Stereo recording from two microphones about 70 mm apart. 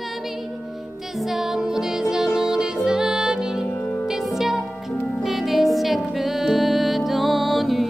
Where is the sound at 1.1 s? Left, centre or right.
Centre.